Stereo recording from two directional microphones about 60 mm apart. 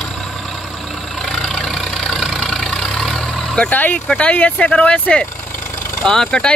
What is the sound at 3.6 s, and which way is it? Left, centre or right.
Speech, left.